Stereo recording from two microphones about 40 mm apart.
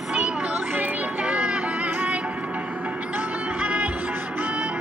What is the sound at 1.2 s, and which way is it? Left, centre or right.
Music, right.